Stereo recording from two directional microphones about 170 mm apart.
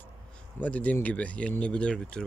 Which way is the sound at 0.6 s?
10° left (ahead or behind).